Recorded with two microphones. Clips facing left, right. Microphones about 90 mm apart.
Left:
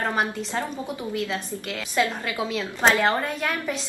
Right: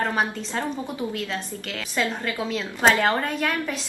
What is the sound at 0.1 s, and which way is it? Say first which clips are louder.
Speech: even; 15° left (ahead or behind).